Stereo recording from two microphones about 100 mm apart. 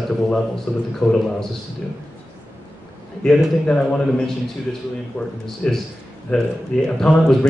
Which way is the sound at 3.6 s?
5° left (ahead or behind).